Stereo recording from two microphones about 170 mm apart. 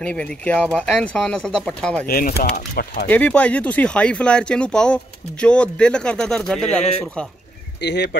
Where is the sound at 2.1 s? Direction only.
60° left (ahead or behind).